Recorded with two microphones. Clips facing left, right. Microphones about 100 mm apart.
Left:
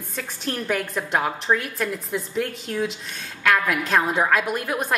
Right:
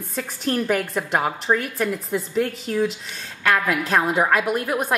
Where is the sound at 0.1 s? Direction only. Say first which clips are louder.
Right 5 dB; centre (ahead or behind).